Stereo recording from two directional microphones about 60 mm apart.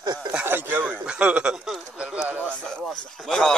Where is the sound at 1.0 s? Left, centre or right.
Centre.